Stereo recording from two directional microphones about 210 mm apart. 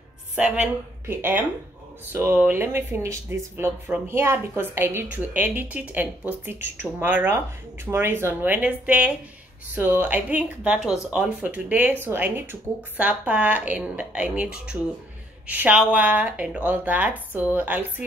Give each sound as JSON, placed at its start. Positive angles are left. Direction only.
{"t": 0.4, "sound": "speech", "side_deg": -5}